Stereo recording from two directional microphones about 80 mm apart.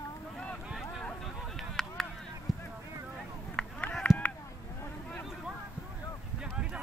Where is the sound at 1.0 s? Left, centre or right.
Centre.